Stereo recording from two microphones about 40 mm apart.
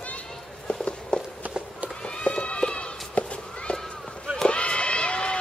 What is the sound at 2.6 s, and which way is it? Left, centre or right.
Horse, left.